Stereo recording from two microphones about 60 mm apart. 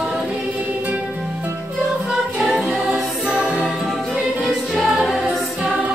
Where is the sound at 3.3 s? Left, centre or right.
Centre.